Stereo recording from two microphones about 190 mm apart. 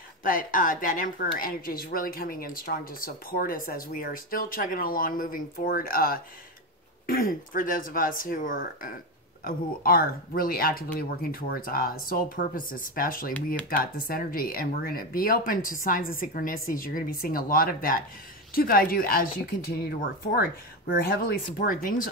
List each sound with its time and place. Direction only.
0.2 s speech: 45° left (ahead or behind)